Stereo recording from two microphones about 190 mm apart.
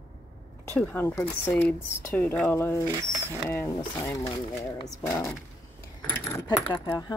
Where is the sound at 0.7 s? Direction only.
10° left (ahead or behind).